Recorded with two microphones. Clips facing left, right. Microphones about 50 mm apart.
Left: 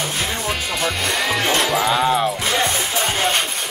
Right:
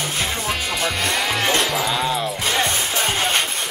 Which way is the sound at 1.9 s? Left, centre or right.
Left.